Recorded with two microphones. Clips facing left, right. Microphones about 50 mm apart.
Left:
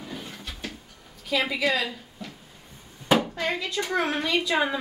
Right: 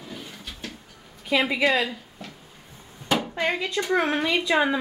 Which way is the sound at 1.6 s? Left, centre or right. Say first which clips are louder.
Right 4 dB; right.